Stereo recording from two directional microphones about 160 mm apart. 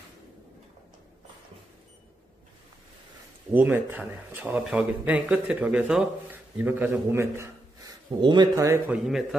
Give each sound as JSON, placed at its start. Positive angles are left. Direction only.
{"t": 3.5, "sound": "speech", "side_deg": -10}
{"t": 8.2, "sound": "speech", "side_deg": -30}